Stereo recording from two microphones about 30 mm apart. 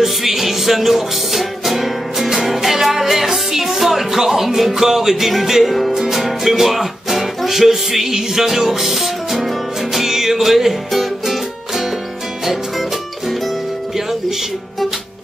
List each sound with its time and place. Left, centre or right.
0.0 s music: centre